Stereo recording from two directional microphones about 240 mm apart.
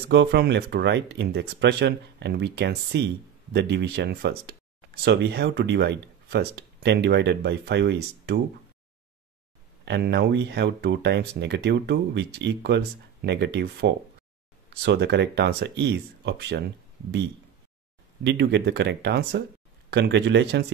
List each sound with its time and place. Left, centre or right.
0.1 s speech: right
9.8 s speech: right
18.2 s speech: right